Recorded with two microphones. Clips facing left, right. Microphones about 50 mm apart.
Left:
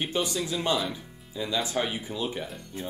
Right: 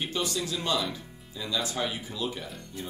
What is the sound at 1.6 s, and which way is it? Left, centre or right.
Speech, left.